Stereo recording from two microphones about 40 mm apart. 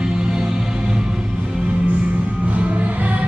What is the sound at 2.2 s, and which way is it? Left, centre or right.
Music, right.